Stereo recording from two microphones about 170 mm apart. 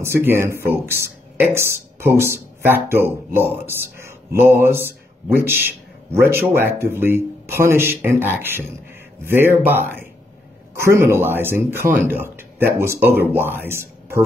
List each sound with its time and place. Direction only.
0.0 s speech: 15° right (ahead or behind)